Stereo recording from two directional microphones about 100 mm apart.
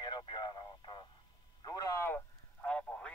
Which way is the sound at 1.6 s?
35° left (ahead or behind).